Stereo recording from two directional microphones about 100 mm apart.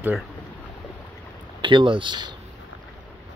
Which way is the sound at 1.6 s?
55° right (ahead or behind).